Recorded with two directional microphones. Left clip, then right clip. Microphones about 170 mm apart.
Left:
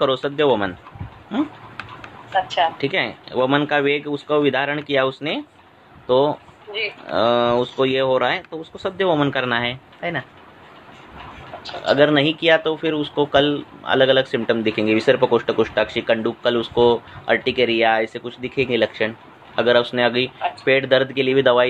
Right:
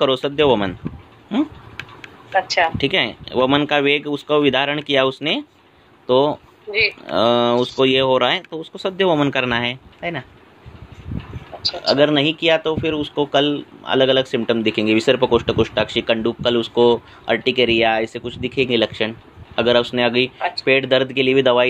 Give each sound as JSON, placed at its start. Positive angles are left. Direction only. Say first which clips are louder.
{"t": 0.0, "sound": "speech", "louder": "right 2 dB", "side_deg": -40}
{"t": 2.4, "sound": "speech", "louder": "right 2 dB", "side_deg": -45}
{"t": 11.8, "sound": "speech", "louder": "even", "side_deg": -30}